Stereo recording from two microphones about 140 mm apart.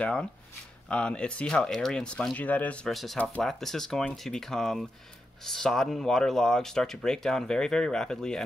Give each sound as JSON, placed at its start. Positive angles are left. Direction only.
{"t": 0.0, "sound": "speech", "side_deg": 5}